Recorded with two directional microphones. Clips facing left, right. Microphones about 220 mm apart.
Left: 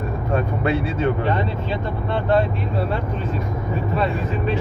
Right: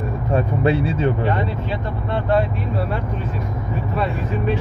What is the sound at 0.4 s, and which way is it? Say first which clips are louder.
Speech: right 4 dB; 30° right (ahead or behind).